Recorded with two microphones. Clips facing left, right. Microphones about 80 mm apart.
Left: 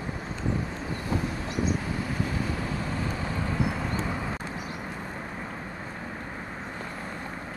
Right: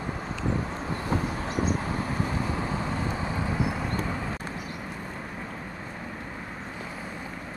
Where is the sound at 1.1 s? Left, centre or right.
Right.